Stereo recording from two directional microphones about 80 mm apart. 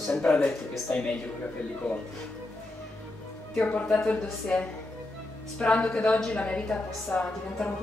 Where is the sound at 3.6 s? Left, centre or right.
Centre.